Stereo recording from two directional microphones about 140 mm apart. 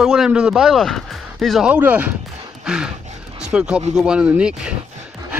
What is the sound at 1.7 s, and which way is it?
Speech, 10° right (ahead or behind).